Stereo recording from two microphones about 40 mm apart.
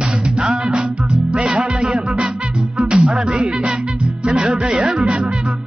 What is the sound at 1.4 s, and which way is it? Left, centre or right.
Music, right.